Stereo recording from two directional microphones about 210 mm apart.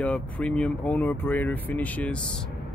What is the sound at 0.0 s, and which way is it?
Speech, 5° left (ahead or behind).